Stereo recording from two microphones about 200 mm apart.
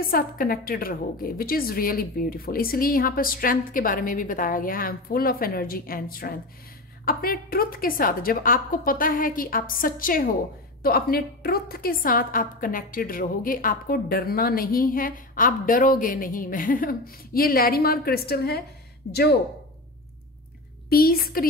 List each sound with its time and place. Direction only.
0.0 s a woman's voice: 45° left (ahead or behind)
20.9 s a woman's voice: 50° left (ahead or behind)